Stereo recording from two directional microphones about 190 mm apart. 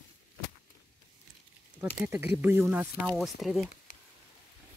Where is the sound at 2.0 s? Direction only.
10° right (ahead or behind).